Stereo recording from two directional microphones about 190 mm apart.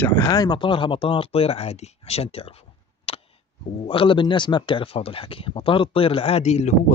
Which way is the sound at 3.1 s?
30° left (ahead or behind).